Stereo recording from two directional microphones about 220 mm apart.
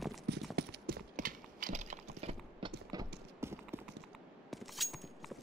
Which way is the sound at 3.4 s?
10° right (ahead or behind).